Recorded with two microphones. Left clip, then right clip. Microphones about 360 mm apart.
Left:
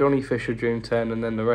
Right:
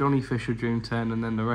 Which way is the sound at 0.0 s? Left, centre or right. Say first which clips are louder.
Left 5 dB; centre.